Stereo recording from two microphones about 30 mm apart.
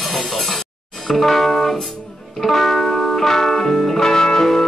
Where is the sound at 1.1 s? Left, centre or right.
Centre.